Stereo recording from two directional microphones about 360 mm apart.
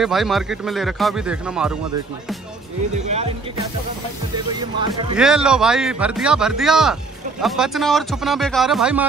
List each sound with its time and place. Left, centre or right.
0.0 s speech: centre
5.1 s speech: centre